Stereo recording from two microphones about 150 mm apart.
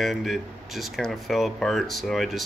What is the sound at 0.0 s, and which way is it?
Speech, centre (ahead or behind).